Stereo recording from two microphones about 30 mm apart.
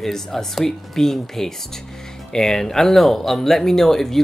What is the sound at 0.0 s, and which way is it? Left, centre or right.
Speech, centre.